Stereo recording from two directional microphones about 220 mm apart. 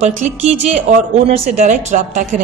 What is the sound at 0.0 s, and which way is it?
A woman's voice, 30° right (ahead or behind).